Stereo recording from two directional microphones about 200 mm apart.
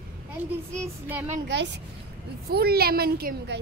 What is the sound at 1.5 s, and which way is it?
A woman's voice, 60° right (ahead or behind).